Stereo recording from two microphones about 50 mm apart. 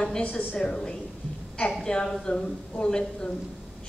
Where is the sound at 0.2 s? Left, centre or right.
Left.